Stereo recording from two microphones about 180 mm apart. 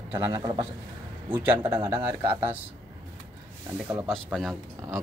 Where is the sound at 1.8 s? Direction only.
25° right (ahead or behind).